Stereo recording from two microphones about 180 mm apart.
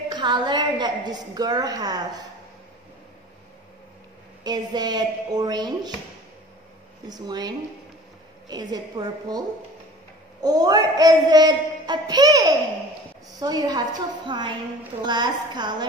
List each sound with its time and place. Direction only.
0.1 s speech: 25° right (ahead or behind)
4.4 s speech: 25° right (ahead or behind)
7.1 s speech: 20° right (ahead or behind)
10.4 s speech: 20° right (ahead or behind)